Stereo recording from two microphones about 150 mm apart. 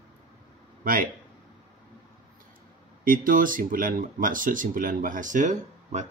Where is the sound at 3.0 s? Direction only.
65° right (ahead or behind).